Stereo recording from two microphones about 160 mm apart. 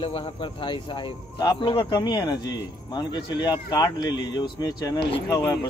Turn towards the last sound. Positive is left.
turn(degrees=20)  # may be behind; listen again after turning